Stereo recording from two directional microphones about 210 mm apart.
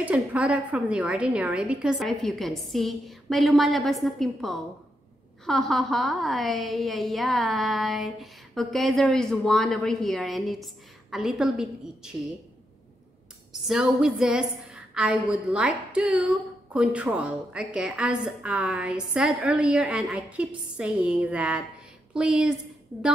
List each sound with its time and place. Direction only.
0.0 s a woman's voice: 5° right (ahead or behind)
13.5 s a woman's voice: 5° right (ahead or behind)